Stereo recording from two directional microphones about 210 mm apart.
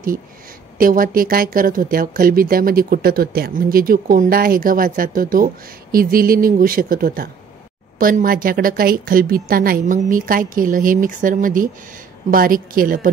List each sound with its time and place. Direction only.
0.7 s a woman's voice: 40° right (ahead or behind)